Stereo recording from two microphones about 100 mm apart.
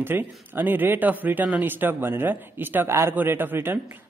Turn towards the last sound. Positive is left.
turn(degrees=-20)  # may be behind; listen again after turning